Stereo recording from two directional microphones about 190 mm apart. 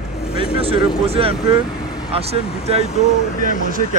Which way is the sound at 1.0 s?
30° right (ahead or behind).